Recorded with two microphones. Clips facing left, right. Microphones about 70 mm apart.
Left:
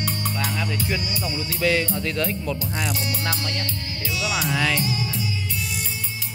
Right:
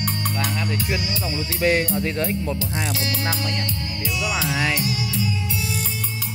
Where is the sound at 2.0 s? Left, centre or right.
Right.